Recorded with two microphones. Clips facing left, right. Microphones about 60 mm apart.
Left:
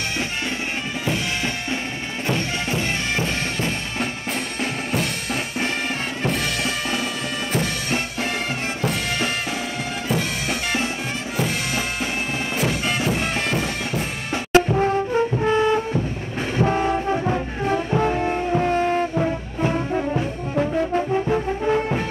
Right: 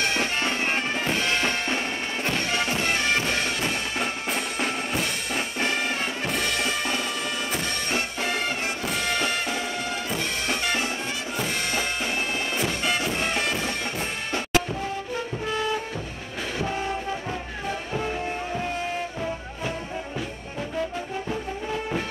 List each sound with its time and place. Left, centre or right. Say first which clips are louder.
1.0 s music: left 2 dB; right
2.7 s music: left 1 dB; left
6.3 s music: left 2 dB; left
12.8 s music: left 3 dB; centre
14.5 s brass instrument: left 10 dB; left
16.5 s music: left 9 dB; left